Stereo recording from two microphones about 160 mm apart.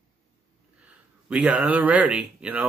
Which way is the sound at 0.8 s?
5° right (ahead or behind).